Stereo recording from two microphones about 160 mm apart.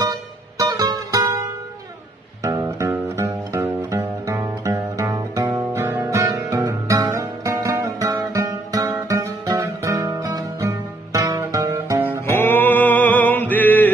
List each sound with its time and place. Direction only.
0.0 s music: 25° right (ahead or behind)
2.4 s music: 20° right (ahead or behind)
12.3 s a sound: 15° left (ahead or behind)